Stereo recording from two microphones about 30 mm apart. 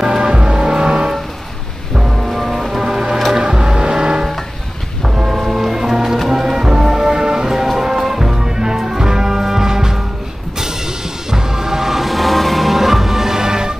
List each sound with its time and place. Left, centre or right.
0.0 s music: right
2.0 s music: centre
2.8 s music: right
5.0 s foghorn: centre
5.5 s music: centre
7.8 s music: centre
11.2 s music: centre
12.1 s music: centre; by 13.7 s right